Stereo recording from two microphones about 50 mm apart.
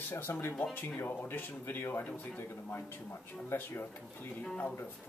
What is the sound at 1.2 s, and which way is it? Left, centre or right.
Speech, left.